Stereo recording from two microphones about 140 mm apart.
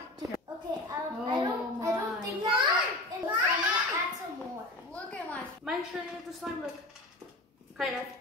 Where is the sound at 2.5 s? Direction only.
35° right (ahead or behind).